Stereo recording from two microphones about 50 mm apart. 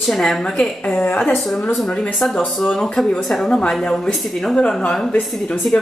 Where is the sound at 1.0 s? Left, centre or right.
Left.